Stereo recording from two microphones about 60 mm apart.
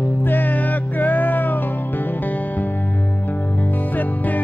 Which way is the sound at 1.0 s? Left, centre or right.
Left.